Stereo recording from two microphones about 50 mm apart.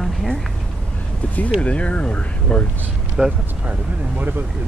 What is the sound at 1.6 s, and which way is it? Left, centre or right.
Speech, left.